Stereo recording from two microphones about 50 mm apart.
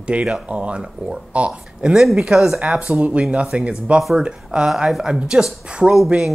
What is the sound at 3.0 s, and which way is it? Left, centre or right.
Speech, right.